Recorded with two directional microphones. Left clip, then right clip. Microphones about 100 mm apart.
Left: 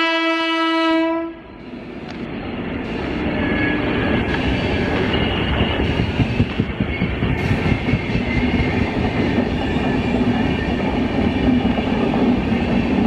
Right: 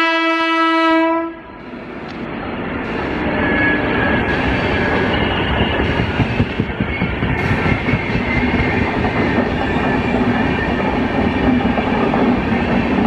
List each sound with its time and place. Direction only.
0.0 s wind instrument: 15° right (ahead or behind)
3.3 s train: 20° right (ahead or behind)